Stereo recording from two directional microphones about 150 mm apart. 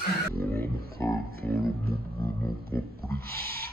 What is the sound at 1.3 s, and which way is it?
Music, 90° right.